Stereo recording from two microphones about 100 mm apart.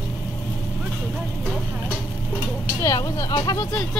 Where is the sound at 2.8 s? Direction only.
35° left (ahead or behind).